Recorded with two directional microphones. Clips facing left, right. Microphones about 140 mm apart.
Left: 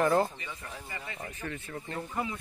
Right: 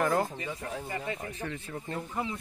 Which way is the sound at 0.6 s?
60° right (ahead or behind).